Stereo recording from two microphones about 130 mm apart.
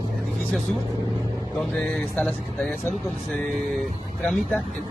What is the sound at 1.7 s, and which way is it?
Speech, 5° left (ahead or behind).